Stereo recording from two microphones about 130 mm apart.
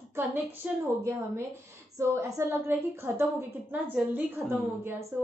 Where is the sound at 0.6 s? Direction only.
10° right (ahead or behind).